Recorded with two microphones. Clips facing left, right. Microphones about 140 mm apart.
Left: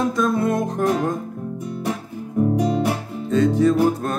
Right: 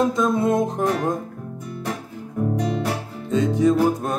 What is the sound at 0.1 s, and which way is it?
Music, 20° right (ahead or behind).